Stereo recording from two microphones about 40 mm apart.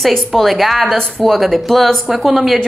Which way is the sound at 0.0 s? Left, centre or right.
Centre.